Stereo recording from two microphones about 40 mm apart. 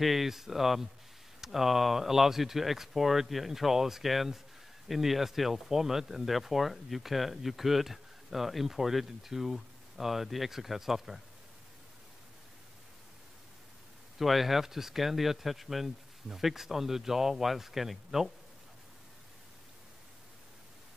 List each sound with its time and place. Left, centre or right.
0.0 s speech: centre
14.1 s speech: centre